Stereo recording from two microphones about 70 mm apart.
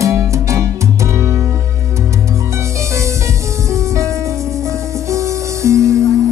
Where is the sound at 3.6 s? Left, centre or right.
Right.